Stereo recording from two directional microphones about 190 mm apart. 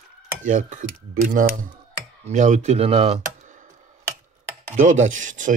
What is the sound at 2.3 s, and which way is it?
Speech, 40° right (ahead or behind).